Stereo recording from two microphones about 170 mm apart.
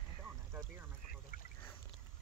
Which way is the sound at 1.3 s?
60° left (ahead or behind).